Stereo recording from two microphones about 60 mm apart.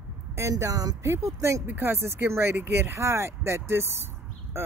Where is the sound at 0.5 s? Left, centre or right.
Right.